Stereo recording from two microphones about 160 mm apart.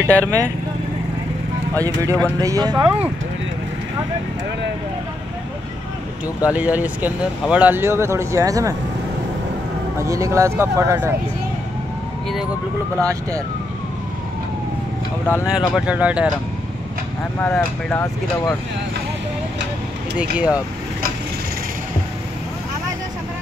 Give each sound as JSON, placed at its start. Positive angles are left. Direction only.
{"t": 0.0, "sound": "speech", "side_deg": -20}
{"t": 1.8, "sound": "speech", "side_deg": -20}
{"t": 6.5, "sound": "speech", "side_deg": -10}
{"t": 9.9, "sound": "speech", "side_deg": -20}
{"t": 13.0, "sound": "speech", "side_deg": -20}
{"t": 15.2, "sound": "speech", "side_deg": 15}
{"t": 15.5, "sound": "speech", "side_deg": -5}
{"t": 17.4, "sound": "speech", "side_deg": 10}
{"t": 20.2, "sound": "speech", "side_deg": -5}